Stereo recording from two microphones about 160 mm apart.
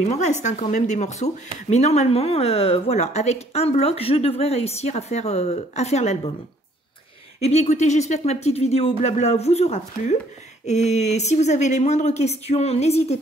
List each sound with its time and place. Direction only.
0.1 s a woman's voice: 45° left (ahead or behind)
7.3 s speech: 40° left (ahead or behind)